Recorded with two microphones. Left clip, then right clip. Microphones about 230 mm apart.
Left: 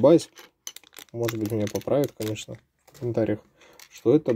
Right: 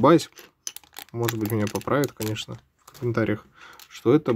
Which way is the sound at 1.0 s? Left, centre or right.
Right.